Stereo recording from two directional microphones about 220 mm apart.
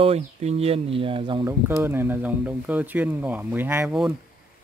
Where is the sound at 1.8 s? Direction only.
10° right (ahead or behind).